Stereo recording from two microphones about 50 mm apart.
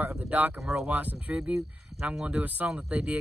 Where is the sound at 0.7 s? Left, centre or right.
Centre.